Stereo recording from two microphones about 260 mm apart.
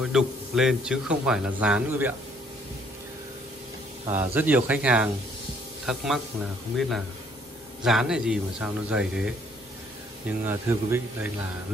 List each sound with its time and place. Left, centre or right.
0.0 s a man's voice: centre
4.0 s a man's voice: centre
7.8 s a man's voice: centre
10.4 s speech: centre